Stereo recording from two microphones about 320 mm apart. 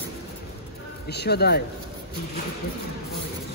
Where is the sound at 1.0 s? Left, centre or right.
Left.